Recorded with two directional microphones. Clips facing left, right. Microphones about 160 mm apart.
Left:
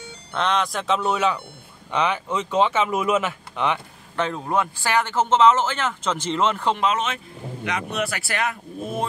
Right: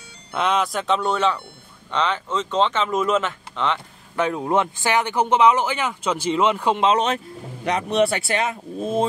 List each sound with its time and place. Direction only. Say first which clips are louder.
0.3 s speech: right 2 dB; 5° right (ahead or behind); by 3.8 s 10° left (ahead or behind)
4.2 s speech: right 3 dB; 15° right (ahead or behind)
6.8 s speech: right 4 dB; 30° right (ahead or behind)